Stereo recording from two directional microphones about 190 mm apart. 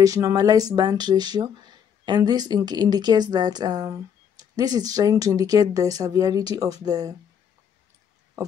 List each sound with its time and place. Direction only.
0.0 s speech: 20° right (ahead or behind)